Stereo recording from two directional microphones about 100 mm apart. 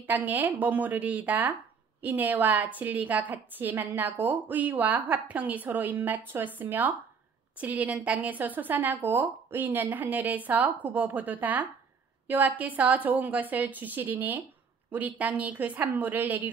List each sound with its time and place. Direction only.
0.0 s speech: 20° right (ahead or behind)